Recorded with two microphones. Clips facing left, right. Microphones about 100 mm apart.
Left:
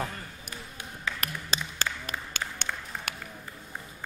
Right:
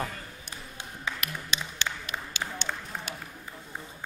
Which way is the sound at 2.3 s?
50° left (ahead or behind).